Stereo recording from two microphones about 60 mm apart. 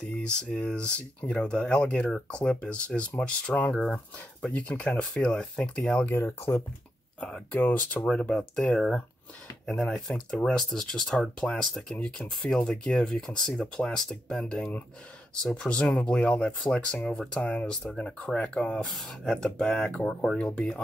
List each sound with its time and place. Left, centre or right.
0.0 s speech: centre
3.7 s speech: centre
4.5 s speech: left
6.0 s speech: left
7.2 s speech: centre
7.6 s speech: left
8.0 s speech: centre
9.8 s speech: centre
18.9 s speech: centre